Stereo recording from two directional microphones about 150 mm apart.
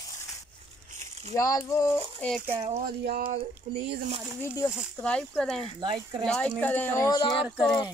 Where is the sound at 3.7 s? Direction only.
40° right (ahead or behind).